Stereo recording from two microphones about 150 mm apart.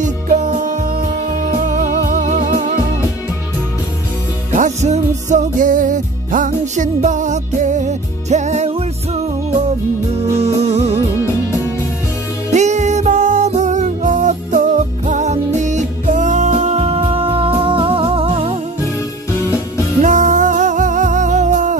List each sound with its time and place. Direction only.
0.0 s music: 55° right (ahead or behind)
4.6 s music: 55° right (ahead or behind)
10.3 s music: 45° right (ahead or behind)
12.5 s music: 50° right (ahead or behind)
20.0 s music: 60° right (ahead or behind)